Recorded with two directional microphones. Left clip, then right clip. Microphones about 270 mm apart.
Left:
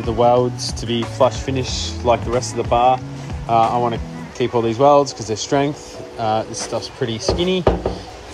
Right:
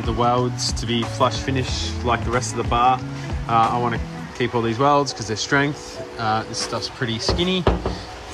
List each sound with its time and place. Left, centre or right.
0.2 s speech: centre
6.3 s speech: centre